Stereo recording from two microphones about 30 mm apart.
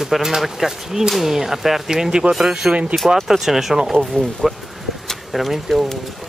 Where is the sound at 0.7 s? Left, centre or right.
Centre.